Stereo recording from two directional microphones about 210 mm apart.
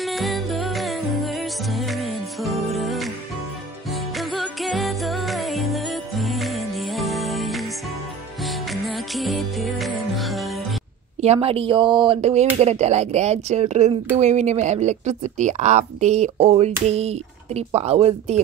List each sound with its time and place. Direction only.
0.0 s music: centre (ahead or behind)
4.2 s music: centre (ahead or behind)
8.8 s music: centre (ahead or behind)
11.1 s a woman's voice: 30° right (ahead or behind)